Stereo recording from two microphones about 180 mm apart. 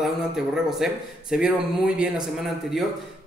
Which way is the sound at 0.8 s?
Centre (ahead or behind).